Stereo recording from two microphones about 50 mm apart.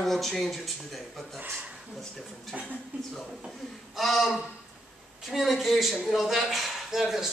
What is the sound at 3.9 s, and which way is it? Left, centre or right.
A man's voice, centre.